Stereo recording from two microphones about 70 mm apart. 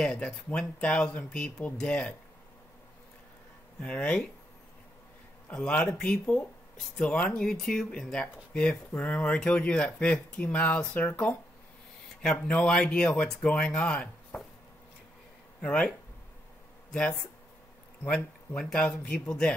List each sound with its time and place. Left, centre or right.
0.0 s speech: centre
3.8 s speech: centre
5.5 s speech: centre
15.6 s speech: centre
16.9 s speech: centre
18.0 s speech: left
18.6 s speech: centre